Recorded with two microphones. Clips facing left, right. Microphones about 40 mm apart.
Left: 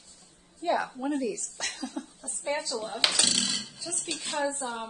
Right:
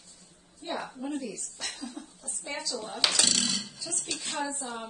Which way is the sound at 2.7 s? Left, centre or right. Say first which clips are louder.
Left 2 dB; centre.